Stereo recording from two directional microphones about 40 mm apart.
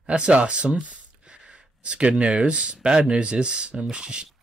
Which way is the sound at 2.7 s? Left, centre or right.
Centre.